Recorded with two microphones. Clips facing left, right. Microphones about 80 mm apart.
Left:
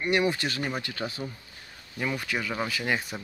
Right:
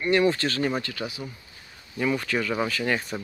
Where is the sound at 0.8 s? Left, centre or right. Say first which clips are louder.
Right 1 dB; left.